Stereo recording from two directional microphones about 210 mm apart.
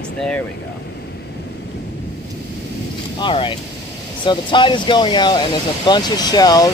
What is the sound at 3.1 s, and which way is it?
Speech, 25° left (ahead or behind).